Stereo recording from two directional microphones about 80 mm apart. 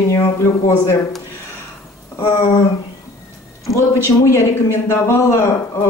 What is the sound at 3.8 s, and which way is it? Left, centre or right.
Speech, left.